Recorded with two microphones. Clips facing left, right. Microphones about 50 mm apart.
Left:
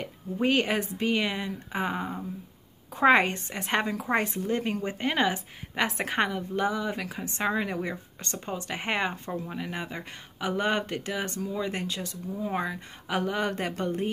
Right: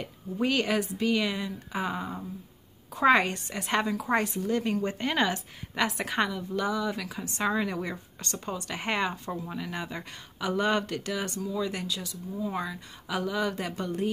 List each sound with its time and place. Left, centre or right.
0.0 s a woman's voice: left
4.8 s a woman's voice: centre; by 14.1 s left